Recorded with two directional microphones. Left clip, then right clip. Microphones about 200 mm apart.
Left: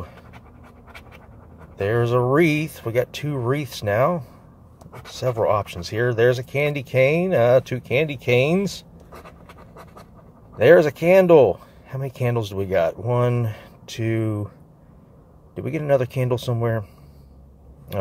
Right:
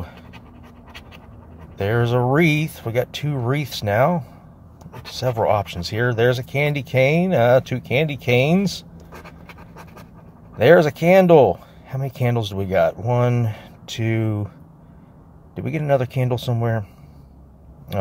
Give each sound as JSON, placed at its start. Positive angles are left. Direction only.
{"t": 1.8, "sound": "speech", "side_deg": -5}
{"t": 10.5, "sound": "speech", "side_deg": -5}
{"t": 15.5, "sound": "speech", "side_deg": 0}